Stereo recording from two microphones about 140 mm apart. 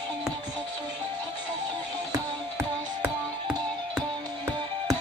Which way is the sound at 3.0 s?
5° right (ahead or behind).